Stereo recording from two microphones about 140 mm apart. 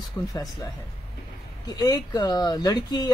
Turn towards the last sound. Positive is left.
turn(degrees=30)  # may be behind; listen again after turning